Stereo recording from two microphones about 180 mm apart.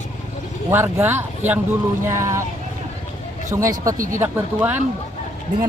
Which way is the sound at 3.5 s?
20° right (ahead or behind).